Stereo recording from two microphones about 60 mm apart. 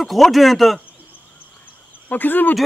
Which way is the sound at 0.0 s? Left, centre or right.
Centre.